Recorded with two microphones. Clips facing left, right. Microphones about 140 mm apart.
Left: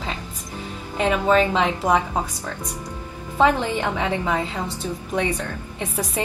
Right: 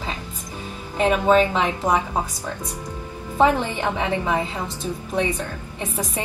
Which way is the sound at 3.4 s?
15° right (ahead or behind).